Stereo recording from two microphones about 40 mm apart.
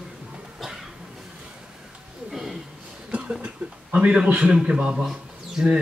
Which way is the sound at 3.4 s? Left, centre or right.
Right.